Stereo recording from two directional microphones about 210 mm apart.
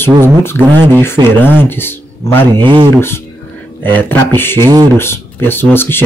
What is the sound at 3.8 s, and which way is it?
Speech, 10° left (ahead or behind).